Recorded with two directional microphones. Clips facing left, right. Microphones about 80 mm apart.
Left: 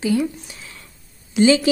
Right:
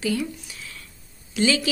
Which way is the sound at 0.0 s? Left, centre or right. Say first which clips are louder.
Left 6 dB; left.